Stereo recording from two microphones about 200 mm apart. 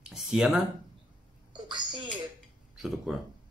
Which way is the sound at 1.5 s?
20° right (ahead or behind).